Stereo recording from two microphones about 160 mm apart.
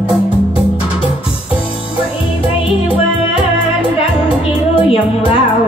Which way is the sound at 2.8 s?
35° left (ahead or behind).